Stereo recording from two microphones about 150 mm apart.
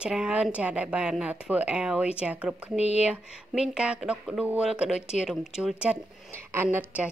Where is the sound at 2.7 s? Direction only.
45° left (ahead or behind).